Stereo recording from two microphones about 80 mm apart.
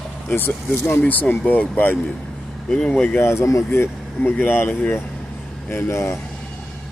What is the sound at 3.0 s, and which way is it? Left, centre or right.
Speech, left.